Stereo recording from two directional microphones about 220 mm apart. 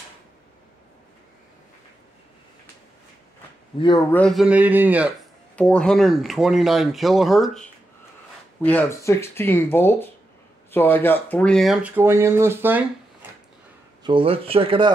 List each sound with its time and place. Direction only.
4.1 s speech: 5° left (ahead or behind)
5.6 s speech: 5° left (ahead or behind)
14.0 s speech: 25° right (ahead or behind)